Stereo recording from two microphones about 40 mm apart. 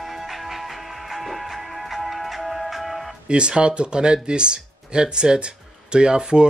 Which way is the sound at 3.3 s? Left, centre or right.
Right.